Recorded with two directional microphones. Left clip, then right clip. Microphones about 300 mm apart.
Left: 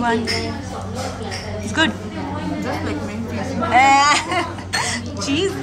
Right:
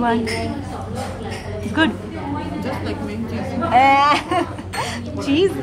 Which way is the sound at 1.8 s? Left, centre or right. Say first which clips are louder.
Even; centre.